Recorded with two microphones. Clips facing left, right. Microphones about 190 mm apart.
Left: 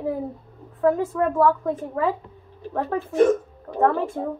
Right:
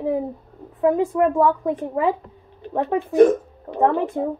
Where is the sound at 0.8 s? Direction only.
15° right (ahead or behind).